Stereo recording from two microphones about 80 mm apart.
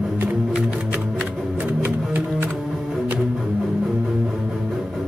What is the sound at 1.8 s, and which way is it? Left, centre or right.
Music, right.